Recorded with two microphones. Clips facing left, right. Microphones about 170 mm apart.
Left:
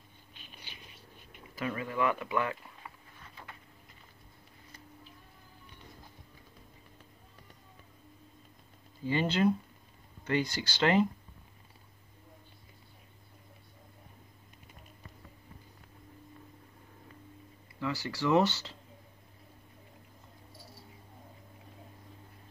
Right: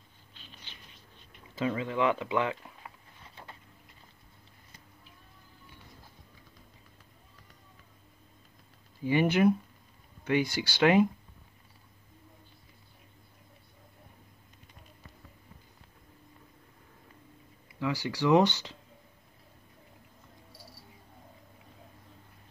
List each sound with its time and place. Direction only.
0.3 s a sound: 15° left (ahead or behind)
1.5 s speech: 20° right (ahead or behind)
9.0 s speech: 15° right (ahead or behind)
17.7 s speech: 15° right (ahead or behind)